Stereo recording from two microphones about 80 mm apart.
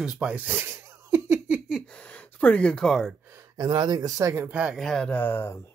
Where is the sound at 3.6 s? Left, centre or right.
Right.